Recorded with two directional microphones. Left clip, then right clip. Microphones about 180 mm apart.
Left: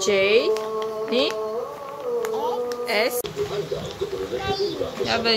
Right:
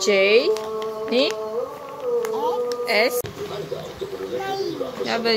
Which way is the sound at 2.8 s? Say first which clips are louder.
Right 3 dB; 20° right (ahead or behind).